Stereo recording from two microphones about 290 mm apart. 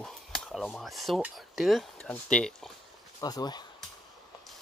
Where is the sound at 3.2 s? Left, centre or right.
Centre.